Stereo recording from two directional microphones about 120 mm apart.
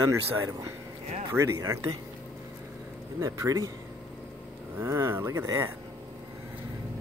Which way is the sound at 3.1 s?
25° right (ahead or behind).